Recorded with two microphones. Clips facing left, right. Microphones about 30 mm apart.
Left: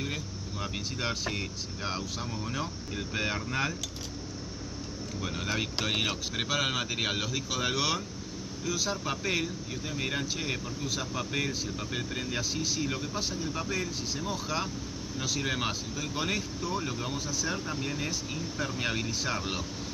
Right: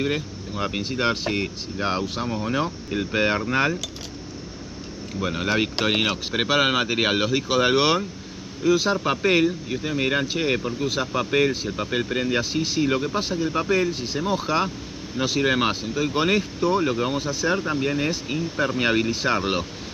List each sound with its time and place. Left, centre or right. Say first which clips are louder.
0.0 s speech: right 10 dB; right
5.2 s speech: right 10 dB; right